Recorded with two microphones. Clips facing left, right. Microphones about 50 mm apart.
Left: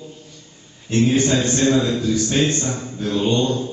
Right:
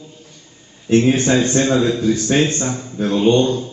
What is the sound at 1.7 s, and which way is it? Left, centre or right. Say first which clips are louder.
Speech: right 2 dB; right.